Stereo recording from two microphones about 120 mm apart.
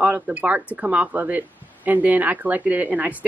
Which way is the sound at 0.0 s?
10° right (ahead or behind).